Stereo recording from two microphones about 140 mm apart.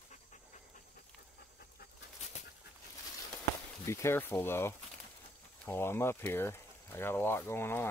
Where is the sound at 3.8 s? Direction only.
20° left (ahead or behind).